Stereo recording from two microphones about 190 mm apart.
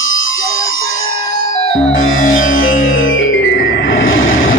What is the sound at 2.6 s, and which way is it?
Music, 45° left (ahead or behind).